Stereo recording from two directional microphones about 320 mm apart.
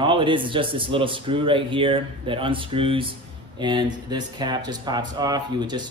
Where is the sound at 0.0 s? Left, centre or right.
Centre.